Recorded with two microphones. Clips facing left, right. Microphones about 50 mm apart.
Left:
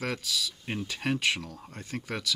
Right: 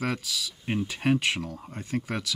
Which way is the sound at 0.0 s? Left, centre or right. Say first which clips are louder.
Right 2 dB; right.